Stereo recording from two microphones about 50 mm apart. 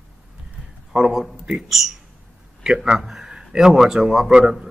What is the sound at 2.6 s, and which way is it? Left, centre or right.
Speech, centre.